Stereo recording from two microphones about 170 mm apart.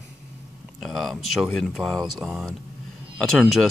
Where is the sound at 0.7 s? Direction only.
Centre (ahead or behind).